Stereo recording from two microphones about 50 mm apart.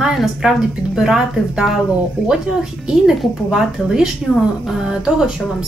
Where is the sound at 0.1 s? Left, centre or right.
Centre.